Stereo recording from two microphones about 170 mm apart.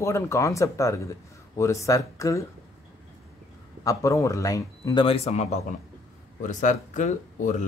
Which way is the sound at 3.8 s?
20° left (ahead or behind).